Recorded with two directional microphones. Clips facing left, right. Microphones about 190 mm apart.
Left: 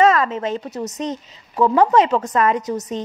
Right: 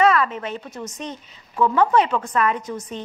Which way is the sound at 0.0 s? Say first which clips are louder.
Left 3 dB; 40° left (ahead or behind).